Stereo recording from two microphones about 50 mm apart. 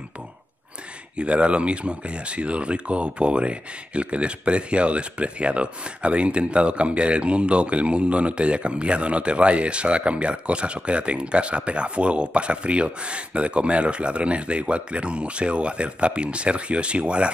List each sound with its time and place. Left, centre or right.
1.1 s speech: right